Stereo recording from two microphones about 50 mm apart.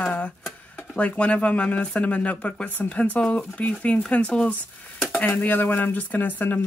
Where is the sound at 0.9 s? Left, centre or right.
Left.